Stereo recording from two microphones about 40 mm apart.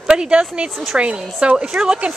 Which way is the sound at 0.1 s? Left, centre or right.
Right.